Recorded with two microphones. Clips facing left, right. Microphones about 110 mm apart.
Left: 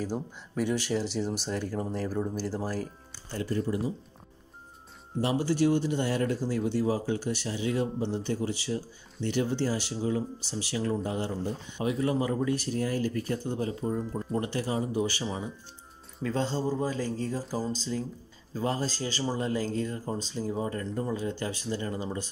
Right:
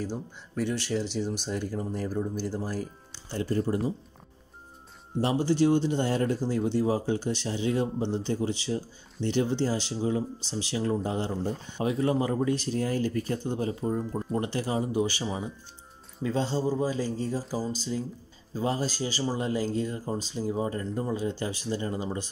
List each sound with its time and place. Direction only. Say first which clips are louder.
0.0 s speech: left 1 dB; 5° left (ahead or behind)
3.4 s speech: right 2 dB; 40° right (ahead or behind)
5.2 s speech: right 2 dB; 25° right (ahead or behind)
17.5 s speech: even; 5° right (ahead or behind)
18.5 s speech: right 1 dB; 20° right (ahead or behind)